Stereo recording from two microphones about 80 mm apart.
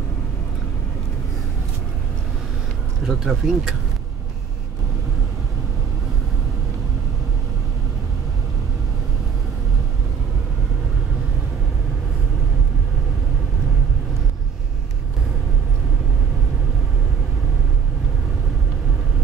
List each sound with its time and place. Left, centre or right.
3.1 s speech: centre